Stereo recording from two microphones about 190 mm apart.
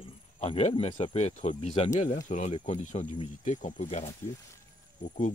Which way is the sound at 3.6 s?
40° left (ahead or behind).